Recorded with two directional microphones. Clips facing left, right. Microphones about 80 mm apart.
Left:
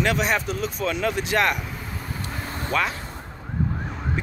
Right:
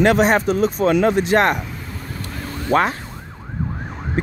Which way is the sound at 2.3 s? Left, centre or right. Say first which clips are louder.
Right 3 dB; left.